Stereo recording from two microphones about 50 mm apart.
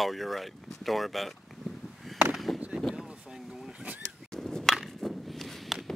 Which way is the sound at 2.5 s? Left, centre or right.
Right.